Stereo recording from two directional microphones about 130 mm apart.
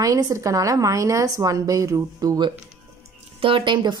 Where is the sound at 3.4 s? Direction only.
40° right (ahead or behind).